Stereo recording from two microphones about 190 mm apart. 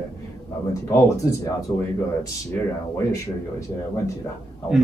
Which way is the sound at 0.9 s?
15° left (ahead or behind).